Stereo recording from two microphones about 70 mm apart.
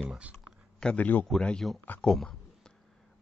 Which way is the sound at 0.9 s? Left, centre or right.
Left.